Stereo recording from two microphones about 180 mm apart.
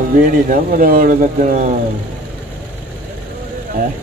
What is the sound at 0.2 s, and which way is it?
Speech, 50° right (ahead or behind).